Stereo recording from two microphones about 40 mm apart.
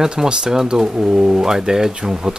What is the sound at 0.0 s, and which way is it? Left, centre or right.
Speech, centre.